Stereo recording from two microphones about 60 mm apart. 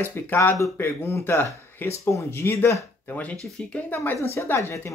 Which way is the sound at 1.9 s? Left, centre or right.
Left.